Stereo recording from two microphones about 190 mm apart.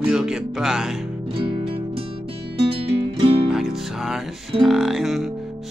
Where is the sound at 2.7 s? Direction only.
30° right (ahead or behind).